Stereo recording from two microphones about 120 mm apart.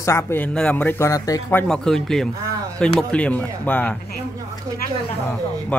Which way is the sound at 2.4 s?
30° right (ahead or behind).